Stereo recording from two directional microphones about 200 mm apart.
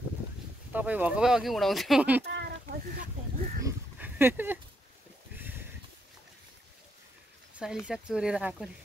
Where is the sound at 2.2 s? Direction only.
60° right (ahead or behind).